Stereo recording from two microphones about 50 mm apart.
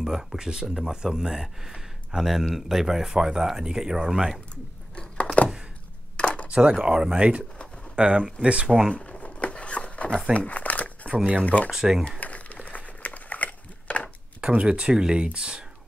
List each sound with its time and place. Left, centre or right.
0.0 s speech: centre
4.9 s a sound: left
6.5 s speech: centre
8.9 s a sound: left
10.3 s crumpling: left
11.4 s speech: left
11.7 s speech: centre
12.2 s a sound: left
14.4 s speech: right